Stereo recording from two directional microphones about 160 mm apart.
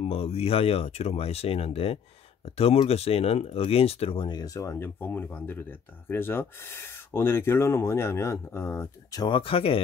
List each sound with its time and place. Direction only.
0.0 s speech: 40° left (ahead or behind)